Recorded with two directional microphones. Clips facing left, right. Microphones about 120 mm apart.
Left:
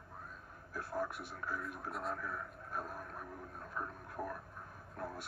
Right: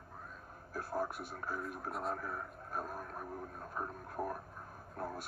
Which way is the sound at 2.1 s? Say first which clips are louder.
Right 1 dB; 30° right (ahead or behind).